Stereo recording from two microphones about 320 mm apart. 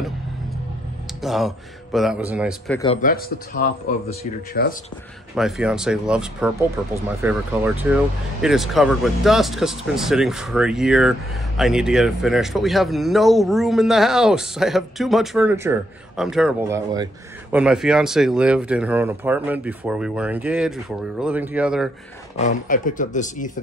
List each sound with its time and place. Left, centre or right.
1.2 s speech: centre
2.8 s speech: left
5.3 s speech: centre
22.4 s speech: left